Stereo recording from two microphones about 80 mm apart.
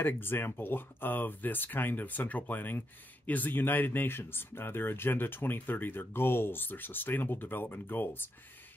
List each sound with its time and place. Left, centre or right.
0.0 s speech: left